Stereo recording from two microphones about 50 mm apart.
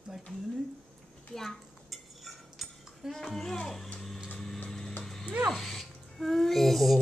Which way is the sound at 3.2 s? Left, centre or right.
Centre.